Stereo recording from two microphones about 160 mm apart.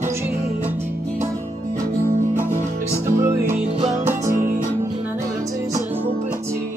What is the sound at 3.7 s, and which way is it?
Music, 40° right (ahead or behind).